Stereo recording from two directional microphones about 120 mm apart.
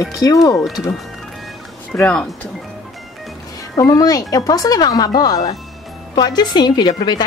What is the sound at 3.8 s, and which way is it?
A woman's voice, 30° left (ahead or behind).